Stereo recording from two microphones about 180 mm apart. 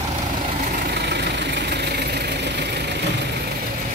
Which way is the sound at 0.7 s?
60° right (ahead or behind).